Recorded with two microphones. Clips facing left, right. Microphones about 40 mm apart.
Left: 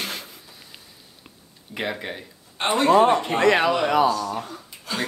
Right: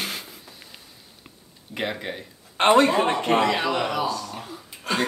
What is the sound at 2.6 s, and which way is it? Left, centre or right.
Speech, right.